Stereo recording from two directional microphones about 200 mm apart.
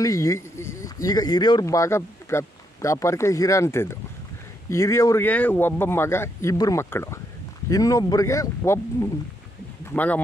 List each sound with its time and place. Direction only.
0.0 s speech: 15° left (ahead or behind)
9.8 s speech: 10° left (ahead or behind)